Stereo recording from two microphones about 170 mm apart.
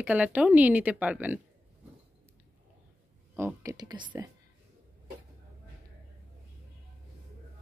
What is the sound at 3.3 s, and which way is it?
Speech, 15° right (ahead or behind).